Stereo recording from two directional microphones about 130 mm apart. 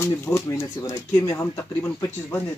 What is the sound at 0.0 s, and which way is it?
Speech, 20° left (ahead or behind).